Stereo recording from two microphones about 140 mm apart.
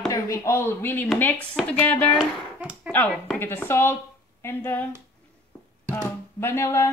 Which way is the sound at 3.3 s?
15° left (ahead or behind).